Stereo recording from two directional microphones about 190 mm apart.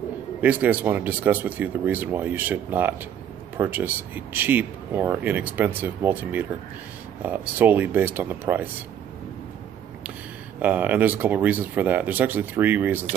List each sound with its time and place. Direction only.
0.4 s speech: 10° right (ahead or behind)
10.6 s speech: 10° right (ahead or behind)